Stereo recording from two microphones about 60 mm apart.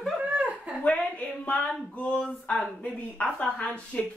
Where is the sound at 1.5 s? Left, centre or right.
Left.